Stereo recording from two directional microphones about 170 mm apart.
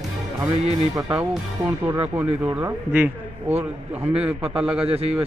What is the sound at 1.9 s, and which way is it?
Speech, 10° right (ahead or behind).